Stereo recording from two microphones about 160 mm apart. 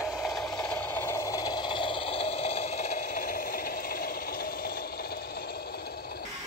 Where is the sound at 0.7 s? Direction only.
15° left (ahead or behind); by 4.0 s 65° left (ahead or behind).